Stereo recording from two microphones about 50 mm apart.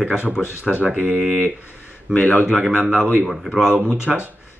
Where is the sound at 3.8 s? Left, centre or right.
Right.